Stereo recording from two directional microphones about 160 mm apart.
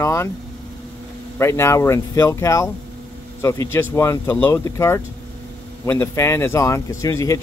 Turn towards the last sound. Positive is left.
turn(degrees=20)  # may be behind; listen again after turning